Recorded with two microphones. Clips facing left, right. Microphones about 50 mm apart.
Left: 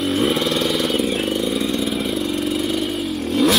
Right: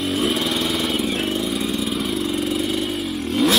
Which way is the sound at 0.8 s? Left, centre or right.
Centre.